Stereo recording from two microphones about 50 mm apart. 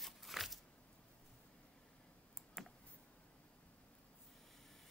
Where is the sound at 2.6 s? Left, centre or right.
Centre.